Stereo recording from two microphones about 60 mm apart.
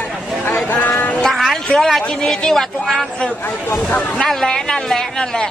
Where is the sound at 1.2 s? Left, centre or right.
Centre.